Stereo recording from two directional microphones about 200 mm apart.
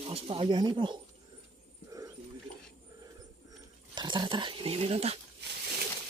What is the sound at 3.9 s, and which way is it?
Speech, 20° right (ahead or behind).